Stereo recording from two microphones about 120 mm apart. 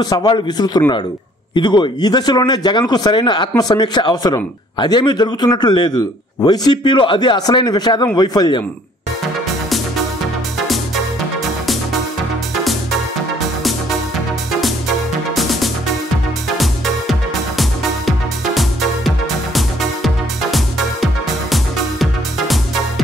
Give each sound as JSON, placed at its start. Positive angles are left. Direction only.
{"t": 0.0, "sound": "speech", "side_deg": 35}
{"t": 16.5, "sound": "music", "side_deg": 0}